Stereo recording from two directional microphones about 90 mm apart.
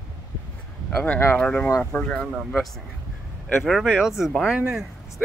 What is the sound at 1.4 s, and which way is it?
Speech, 15° left (ahead or behind).